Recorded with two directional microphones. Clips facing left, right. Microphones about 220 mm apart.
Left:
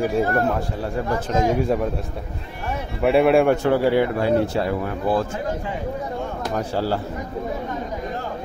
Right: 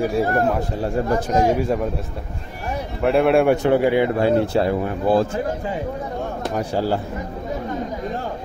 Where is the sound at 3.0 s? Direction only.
Centre (ahead or behind).